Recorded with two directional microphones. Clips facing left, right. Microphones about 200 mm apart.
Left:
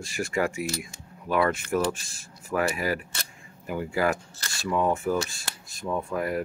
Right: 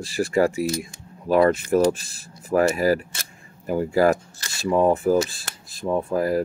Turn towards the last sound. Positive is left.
turn(degrees=-35)  # may be behind; listen again after turning